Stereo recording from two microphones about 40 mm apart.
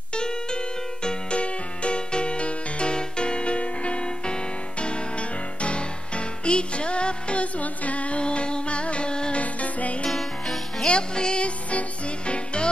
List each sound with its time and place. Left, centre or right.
0.1 s music: left
9.4 s music: left
10.0 s music: centre
10.9 s music: left